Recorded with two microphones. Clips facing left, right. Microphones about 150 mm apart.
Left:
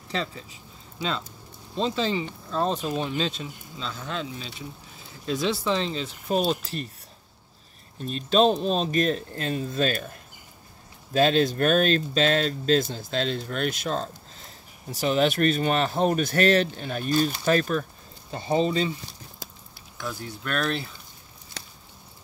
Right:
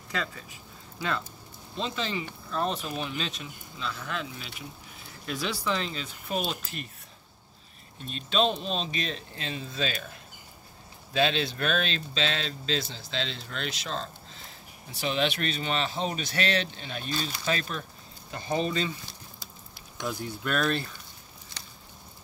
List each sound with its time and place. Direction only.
0.1 s speech: 25° left (ahead or behind)
1.8 s speech: 35° left (ahead or behind)
8.0 s speech: 40° left (ahead or behind)
11.1 s speech: 45° left (ahead or behind)
18.3 s speech: 25° left (ahead or behind)
20.0 s speech: 15° right (ahead or behind)
20.4 s speech: centre (ahead or behind)